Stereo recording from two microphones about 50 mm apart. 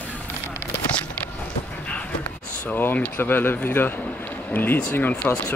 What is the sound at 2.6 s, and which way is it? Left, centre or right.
A man's voice, left.